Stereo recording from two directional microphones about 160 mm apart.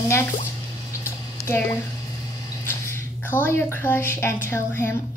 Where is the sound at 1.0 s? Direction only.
15° left (ahead or behind).